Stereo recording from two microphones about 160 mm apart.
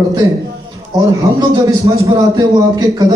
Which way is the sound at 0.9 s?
25° right (ahead or behind).